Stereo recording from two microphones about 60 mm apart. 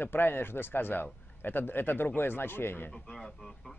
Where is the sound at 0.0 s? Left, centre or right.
Left.